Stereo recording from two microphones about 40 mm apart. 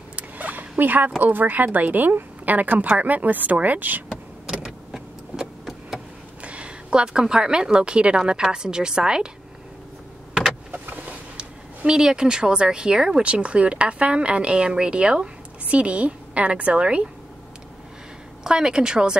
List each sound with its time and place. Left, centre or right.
0.1 s vehicle: right
1.2 s speech: right
4.1 s power windows: centre
4.9 s vehicle: centre
6.4 s a sound: right
6.9 s a woman's voice: right
10.7 s vehicle: right
11.3 s speech: centre
13.2 s a woman's voice: right
18.4 s a woman's voice: centre